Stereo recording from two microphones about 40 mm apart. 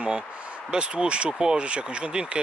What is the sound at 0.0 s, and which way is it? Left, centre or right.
Speech, right.